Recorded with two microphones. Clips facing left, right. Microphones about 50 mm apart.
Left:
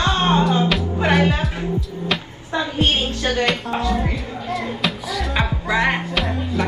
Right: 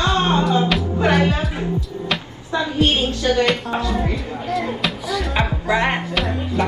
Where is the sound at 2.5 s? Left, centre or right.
Left.